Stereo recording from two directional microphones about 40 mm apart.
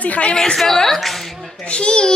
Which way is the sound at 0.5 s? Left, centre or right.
Centre.